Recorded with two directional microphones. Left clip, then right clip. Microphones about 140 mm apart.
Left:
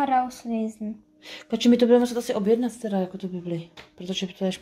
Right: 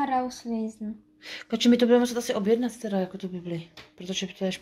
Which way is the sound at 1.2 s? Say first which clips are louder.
Left 1 dB; 10° left (ahead or behind).